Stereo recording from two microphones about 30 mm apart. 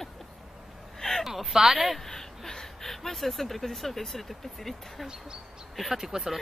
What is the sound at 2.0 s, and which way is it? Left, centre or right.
Speech, centre.